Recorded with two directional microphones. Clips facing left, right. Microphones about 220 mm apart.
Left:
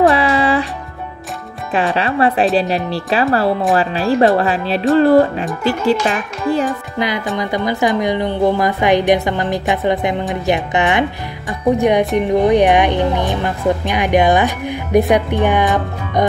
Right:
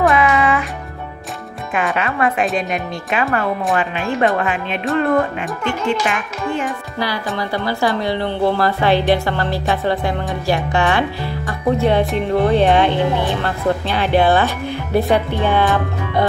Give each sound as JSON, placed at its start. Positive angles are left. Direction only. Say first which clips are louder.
{"t": 0.1, "sound": "music", "louder": "left 1 dB", "side_deg": 30}
{"t": 1.7, "sound": "a child's voice", "louder": "left 3 dB", "side_deg": 30}
{"t": 7.3, "sound": "a woman's voice", "louder": "left 3 dB", "side_deg": 15}